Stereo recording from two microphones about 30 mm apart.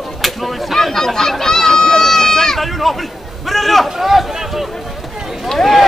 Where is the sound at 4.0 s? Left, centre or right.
Centre.